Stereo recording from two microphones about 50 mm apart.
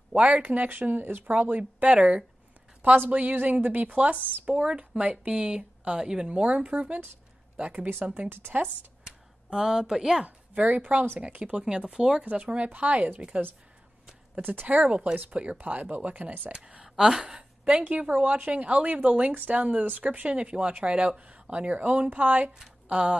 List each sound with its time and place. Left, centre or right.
0.1 s speech: right
2.8 s a woman's voice: right
6.7 s speech: right
7.5 s speech: right
7.9 s speech: right
9.0 s a sound: centre
10.2 s speech: right
11.6 s speech: centre
12.2 s speech: right
14.4 s speech: right
14.8 s speech: right
16.5 s speech: centre
17.4 s speech: right